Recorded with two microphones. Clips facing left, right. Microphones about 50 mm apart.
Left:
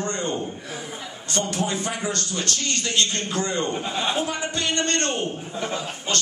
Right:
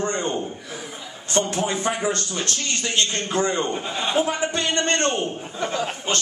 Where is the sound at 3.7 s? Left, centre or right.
Centre.